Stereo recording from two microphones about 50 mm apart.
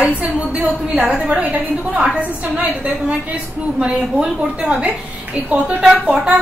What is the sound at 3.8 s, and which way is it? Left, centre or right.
A woman's voice, right.